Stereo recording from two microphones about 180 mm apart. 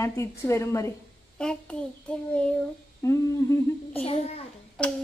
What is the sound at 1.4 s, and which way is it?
Child singing, 5° left (ahead or behind).